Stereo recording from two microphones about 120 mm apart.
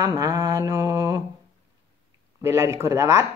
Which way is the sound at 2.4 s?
25° right (ahead or behind).